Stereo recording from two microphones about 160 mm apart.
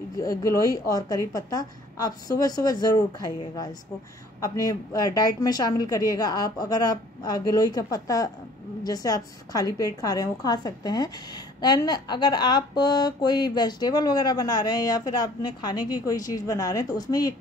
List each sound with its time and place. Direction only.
0.2 s a woman's voice: 20° left (ahead or behind)